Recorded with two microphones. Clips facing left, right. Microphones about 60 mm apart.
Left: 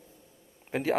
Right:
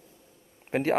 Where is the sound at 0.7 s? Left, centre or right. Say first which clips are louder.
Right 3 dB; right.